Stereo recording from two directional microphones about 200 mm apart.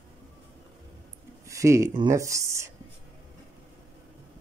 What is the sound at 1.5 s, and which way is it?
Speech, 15° right (ahead or behind).